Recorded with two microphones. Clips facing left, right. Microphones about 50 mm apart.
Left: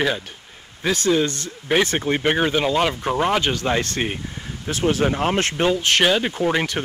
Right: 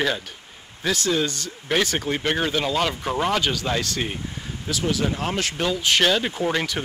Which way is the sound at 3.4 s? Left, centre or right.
Left.